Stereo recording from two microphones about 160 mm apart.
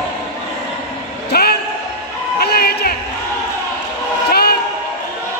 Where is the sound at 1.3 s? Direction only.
85° left.